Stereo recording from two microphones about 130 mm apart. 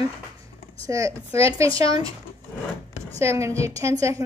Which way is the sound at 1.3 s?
45° left (ahead or behind).